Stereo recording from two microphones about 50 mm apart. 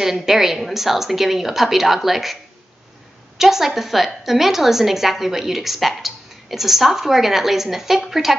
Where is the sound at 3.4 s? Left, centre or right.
Centre.